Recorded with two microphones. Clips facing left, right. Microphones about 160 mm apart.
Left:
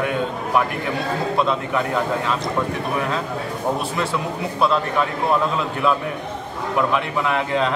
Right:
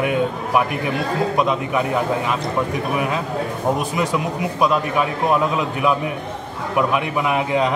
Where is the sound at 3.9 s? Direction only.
15° right (ahead or behind).